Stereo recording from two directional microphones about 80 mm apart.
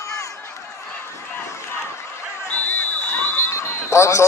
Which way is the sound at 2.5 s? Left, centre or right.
Centre.